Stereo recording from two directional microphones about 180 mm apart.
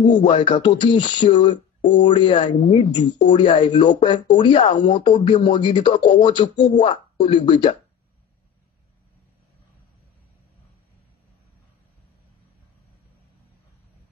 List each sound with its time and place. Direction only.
0.0 s speech: 25° left (ahead or behind)